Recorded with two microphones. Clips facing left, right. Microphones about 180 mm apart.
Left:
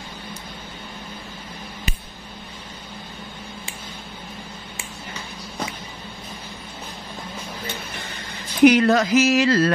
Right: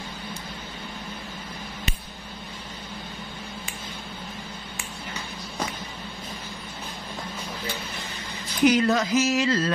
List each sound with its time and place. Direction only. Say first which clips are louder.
8.6 s speech: left 6 dB; 65° left (ahead or behind)